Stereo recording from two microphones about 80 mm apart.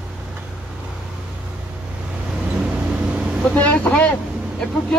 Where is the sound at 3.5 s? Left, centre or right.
Centre.